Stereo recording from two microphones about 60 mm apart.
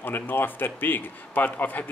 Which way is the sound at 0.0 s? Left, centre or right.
Left.